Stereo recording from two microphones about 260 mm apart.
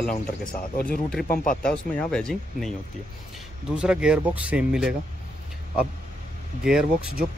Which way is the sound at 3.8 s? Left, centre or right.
Centre.